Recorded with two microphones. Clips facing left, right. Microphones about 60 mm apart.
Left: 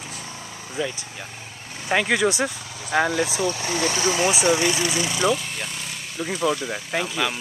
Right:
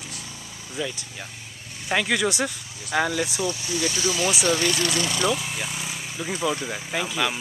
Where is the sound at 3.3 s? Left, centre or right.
Left.